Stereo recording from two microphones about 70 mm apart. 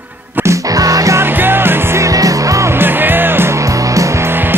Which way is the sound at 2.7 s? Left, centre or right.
Right.